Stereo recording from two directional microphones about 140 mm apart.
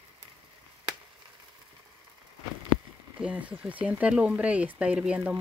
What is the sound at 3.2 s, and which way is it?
Speech, 10° right (ahead or behind).